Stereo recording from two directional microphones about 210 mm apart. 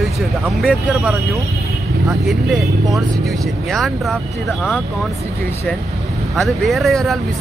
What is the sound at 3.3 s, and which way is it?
Speech, centre (ahead or behind).